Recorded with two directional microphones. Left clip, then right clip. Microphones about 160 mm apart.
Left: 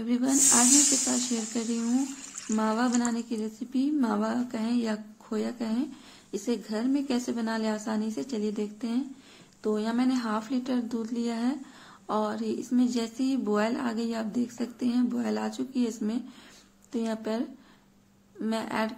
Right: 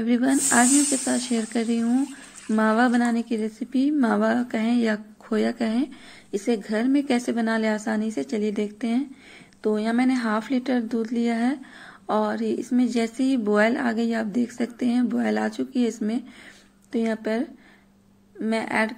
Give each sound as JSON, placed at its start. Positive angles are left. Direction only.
{"t": 0.0, "sound": "speech", "side_deg": -20}